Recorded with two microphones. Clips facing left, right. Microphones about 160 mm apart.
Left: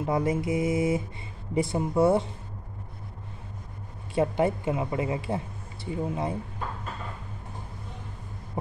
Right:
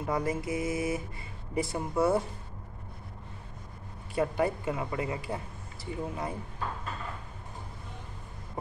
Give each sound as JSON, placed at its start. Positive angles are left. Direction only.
{"t": 0.0, "sound": "speech", "side_deg": 25}
{"t": 4.1, "sound": "speech", "side_deg": 25}